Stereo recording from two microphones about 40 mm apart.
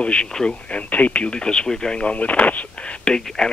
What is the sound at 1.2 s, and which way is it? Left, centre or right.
Speech, left.